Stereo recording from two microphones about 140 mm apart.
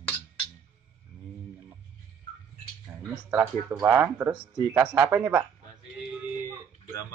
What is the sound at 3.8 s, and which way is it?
A man's voice, 15° right (ahead or behind).